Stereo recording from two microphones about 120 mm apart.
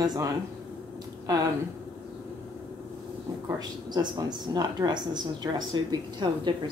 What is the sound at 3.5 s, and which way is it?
A woman's voice, 35° right (ahead or behind).